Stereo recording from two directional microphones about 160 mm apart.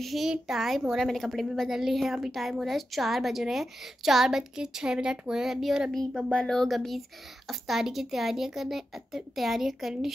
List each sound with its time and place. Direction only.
0.0 s a woman's voice: centre (ahead or behind)